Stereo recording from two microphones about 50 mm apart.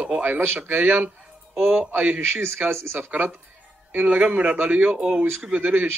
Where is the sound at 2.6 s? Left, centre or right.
Right.